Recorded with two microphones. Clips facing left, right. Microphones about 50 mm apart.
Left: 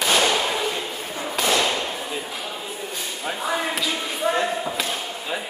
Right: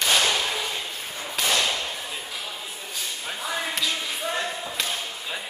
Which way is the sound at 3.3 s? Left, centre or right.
Centre.